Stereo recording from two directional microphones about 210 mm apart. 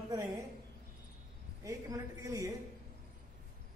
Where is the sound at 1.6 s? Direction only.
15° right (ahead or behind).